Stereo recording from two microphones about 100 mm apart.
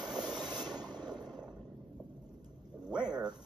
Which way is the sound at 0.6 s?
45° right (ahead or behind).